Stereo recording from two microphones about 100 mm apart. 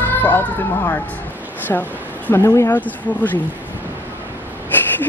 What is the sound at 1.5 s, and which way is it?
A woman's voice, 20° left (ahead or behind).